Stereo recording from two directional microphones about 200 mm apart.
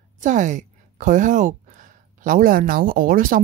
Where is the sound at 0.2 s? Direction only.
40° right (ahead or behind).